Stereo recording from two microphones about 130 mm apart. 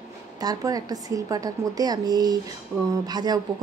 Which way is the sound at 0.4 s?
30° right (ahead or behind).